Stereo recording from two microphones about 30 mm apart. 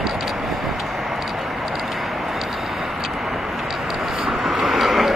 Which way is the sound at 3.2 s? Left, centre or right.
Centre.